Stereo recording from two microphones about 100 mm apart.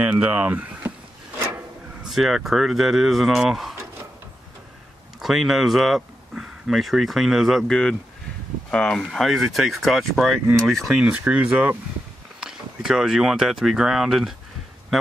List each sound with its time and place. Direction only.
0.0 s speech: 15° right (ahead or behind)
2.0 s speech: centre (ahead or behind)
5.2 s speech: centre (ahead or behind)
11.0 s speech: 10° right (ahead or behind)